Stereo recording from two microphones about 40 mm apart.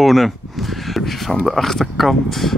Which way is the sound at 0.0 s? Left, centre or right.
Centre.